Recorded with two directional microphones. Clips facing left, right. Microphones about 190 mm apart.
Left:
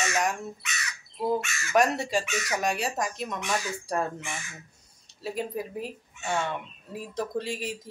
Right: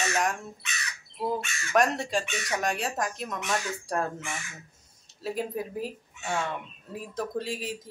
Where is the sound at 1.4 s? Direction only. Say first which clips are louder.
Left 1 dB; 30° right (ahead or behind).